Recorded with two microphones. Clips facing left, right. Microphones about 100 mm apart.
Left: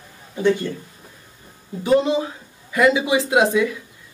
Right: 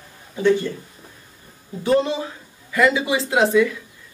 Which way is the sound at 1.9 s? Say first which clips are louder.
Left 2 dB; 15° left (ahead or behind).